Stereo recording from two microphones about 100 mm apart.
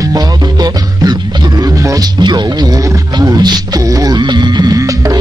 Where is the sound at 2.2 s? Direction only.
45° right (ahead or behind).